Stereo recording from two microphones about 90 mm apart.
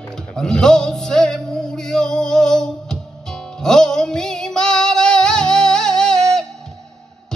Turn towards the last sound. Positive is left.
turn(degrees=5)  # may be behind; listen again after turning